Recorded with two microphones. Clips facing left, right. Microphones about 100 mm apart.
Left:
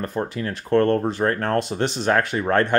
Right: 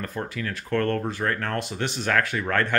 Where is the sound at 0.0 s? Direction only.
25° left (ahead or behind).